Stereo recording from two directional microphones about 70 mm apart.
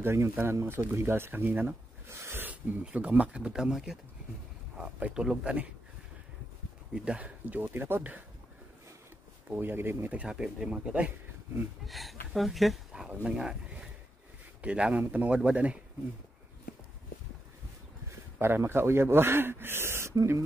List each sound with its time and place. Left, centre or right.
0.0 s a man's voice: right
2.0 s a sound: right
2.8 s speech: centre
6.9 s speech: centre
9.6 s a man's voice: right
10.1 s speech: centre
11.8 s speech: centre
13.1 s speech: centre
14.6 s speech: centre
18.4 s a man's voice: right